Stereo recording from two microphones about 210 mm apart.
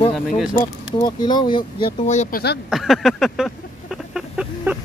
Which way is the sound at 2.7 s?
Centre (ahead or behind).